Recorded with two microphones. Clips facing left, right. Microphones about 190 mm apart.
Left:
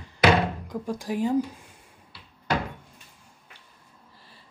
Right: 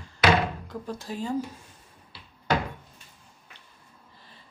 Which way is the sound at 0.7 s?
15° left (ahead or behind).